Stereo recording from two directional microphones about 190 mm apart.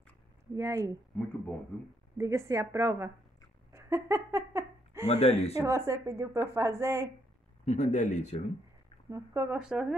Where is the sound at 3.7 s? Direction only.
15° right (ahead or behind).